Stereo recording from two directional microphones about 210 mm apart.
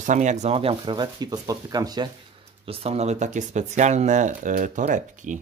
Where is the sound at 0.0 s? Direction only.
35° right (ahead or behind).